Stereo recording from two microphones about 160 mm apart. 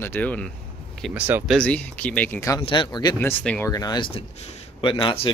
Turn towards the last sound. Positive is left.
turn(degrees=35)  # may be behind; listen again after turning